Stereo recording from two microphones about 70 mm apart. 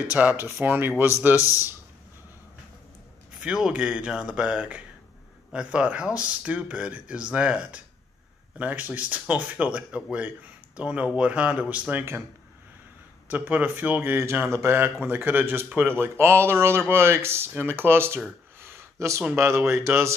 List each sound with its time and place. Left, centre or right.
0.1 s speech: right
3.3 s speech: centre
13.3 s speech: right
14.1 s speech: right
18.6 s a sound: right
19.3 s speech: right